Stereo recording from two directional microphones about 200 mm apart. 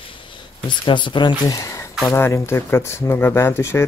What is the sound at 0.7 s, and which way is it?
Speech, 25° left (ahead or behind).